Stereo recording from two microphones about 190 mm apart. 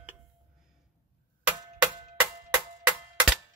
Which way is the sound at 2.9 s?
5° right (ahead or behind).